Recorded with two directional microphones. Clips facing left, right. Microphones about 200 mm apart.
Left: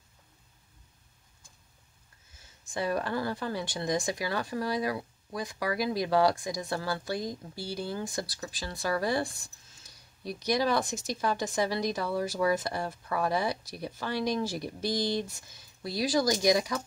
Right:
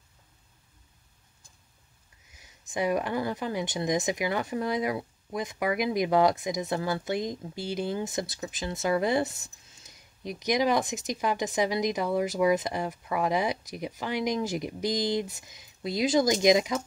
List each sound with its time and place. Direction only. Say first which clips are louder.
2.2 s speech: right 2 dB; 15° right (ahead or behind)